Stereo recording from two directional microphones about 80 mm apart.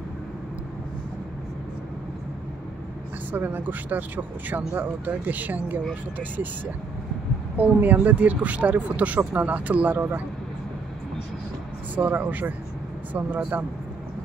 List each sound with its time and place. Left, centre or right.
3.3 s speech: right
11.9 s speech: right